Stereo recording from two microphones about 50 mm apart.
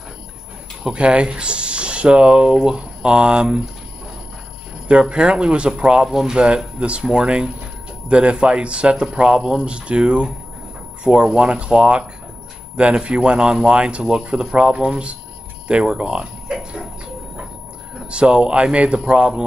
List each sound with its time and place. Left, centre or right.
0.9 s speech: right
5.0 s speech: centre
15.7 s a sound: centre
18.1 s speech: right